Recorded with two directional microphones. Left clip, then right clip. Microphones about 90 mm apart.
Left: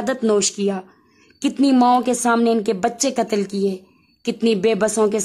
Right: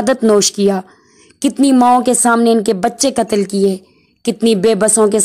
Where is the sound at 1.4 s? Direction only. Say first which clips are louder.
Right 5 dB; 40° right (ahead or behind).